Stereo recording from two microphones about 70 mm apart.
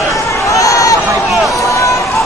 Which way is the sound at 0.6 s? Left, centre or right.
Left.